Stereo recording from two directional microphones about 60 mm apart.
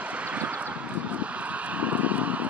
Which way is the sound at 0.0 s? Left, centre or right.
Right.